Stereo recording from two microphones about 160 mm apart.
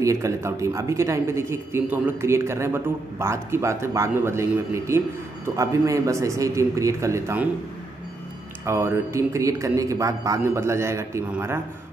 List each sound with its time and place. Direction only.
0.0 s a man's voice: 20° right (ahead or behind)
8.6 s speech: 15° right (ahead or behind)